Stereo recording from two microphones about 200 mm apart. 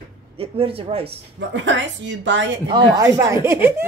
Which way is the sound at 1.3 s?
65° right (ahead or behind).